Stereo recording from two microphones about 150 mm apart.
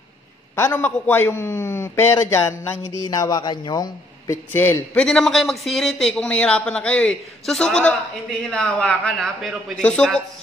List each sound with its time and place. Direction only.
0.6 s a man's voice: 15° left (ahead or behind)
4.5 s a man's voice: 15° left (ahead or behind)